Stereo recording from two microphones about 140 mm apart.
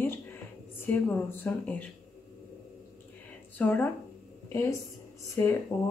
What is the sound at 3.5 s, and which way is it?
A woman's voice, 15° left (ahead or behind).